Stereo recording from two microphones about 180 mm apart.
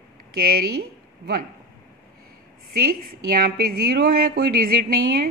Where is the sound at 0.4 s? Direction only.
55° right (ahead or behind).